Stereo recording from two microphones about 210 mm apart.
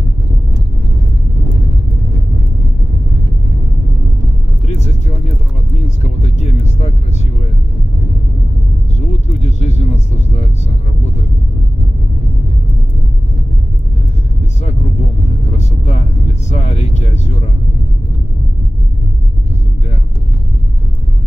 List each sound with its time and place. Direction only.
4.6 s vehicle: 35° left (ahead or behind)
9.4 s vehicle: 35° left (ahead or behind)
15.8 s vehicle: 30° left (ahead or behind)